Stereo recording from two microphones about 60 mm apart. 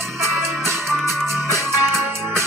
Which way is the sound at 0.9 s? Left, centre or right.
Centre.